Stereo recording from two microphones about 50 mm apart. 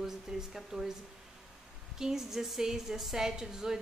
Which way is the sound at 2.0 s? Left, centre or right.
Centre.